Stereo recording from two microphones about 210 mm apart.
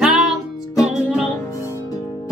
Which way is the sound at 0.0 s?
Centre (ahead or behind).